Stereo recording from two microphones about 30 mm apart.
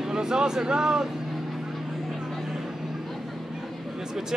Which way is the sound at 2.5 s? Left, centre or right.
Centre.